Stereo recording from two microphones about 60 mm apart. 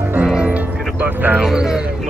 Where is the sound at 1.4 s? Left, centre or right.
Centre.